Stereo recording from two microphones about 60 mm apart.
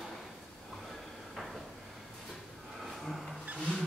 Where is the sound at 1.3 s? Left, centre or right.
Centre.